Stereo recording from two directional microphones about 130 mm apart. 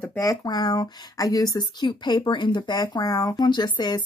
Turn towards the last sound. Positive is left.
turn(degrees=35)  # may be behind; listen again after turning